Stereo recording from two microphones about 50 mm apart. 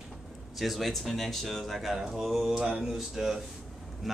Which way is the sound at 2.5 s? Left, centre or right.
Centre.